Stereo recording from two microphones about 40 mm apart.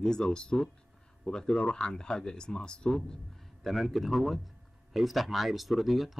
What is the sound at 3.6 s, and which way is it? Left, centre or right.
Speech, centre.